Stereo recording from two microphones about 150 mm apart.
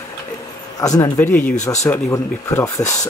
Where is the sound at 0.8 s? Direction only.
25° left (ahead or behind).